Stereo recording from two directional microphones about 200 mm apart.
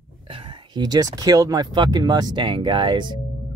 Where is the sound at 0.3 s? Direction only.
25° right (ahead or behind).